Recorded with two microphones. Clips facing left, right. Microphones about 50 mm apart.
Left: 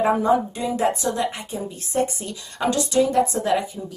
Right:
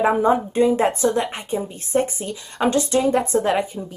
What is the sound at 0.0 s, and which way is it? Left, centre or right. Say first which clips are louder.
A woman's voice: right 1 dB; right.